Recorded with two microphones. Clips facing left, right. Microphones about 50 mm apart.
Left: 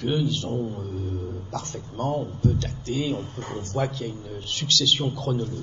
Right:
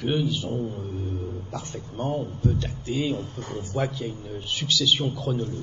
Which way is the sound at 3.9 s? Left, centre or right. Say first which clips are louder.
Even; centre.